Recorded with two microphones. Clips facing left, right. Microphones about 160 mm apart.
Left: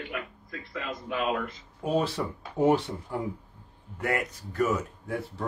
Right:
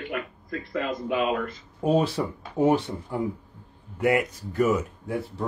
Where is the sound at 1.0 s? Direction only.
5° right (ahead or behind).